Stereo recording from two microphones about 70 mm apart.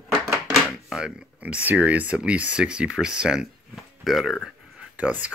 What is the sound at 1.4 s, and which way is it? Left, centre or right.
Speech, right.